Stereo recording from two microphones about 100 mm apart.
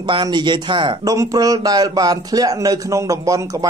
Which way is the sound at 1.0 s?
35° right (ahead or behind).